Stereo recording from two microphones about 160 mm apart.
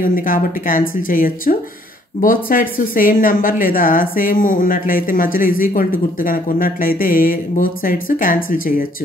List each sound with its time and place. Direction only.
0.0 s speech: 60° left (ahead or behind)